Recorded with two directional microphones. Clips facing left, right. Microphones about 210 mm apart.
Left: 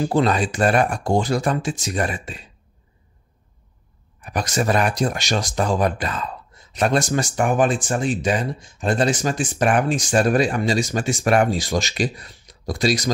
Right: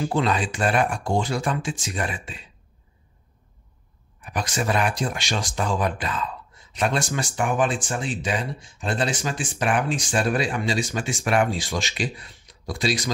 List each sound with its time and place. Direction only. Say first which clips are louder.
0.0 s speech: left 4 dB; 40° left (ahead or behind)
4.2 s speech: left 4 dB; 40° left (ahead or behind)